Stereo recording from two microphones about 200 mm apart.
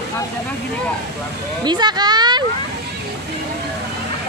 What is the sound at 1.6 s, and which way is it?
Speech, 20° right (ahead or behind).